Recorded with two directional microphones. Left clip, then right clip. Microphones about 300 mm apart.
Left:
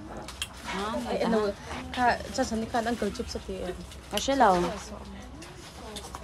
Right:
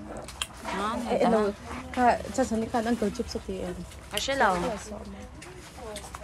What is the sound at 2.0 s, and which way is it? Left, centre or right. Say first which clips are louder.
Speech: right 2 dB; centre.